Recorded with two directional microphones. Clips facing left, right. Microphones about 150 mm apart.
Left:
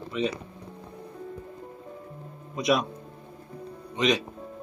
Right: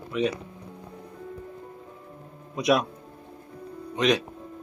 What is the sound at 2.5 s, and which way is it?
Speech, centre (ahead or behind).